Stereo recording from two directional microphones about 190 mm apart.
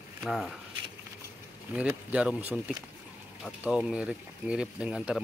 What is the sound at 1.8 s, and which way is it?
Speech, 10° right (ahead or behind).